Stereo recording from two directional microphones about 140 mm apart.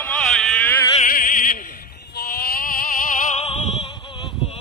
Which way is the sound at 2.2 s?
90° left.